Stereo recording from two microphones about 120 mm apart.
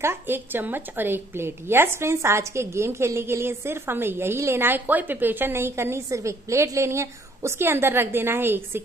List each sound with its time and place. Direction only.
0.0 s a woman's voice: 20° right (ahead or behind)